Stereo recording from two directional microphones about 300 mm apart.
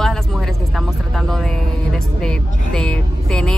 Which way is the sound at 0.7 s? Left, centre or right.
Centre.